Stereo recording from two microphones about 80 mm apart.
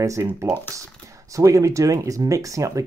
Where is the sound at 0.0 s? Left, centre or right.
Right.